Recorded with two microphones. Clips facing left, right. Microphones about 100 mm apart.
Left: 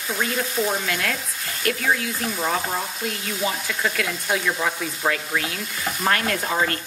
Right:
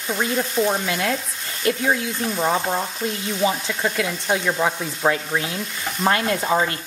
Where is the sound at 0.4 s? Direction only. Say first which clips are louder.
Right 4 dB; centre (ahead or behind).